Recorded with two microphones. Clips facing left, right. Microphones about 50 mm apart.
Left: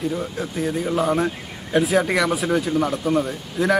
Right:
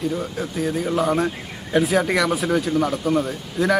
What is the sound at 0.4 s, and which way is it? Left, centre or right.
Speech, centre.